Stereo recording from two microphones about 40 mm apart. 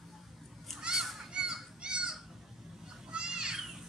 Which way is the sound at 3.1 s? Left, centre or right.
Right.